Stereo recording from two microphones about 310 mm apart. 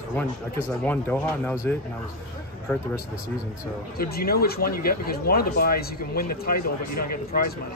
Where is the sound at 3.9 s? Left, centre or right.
Left.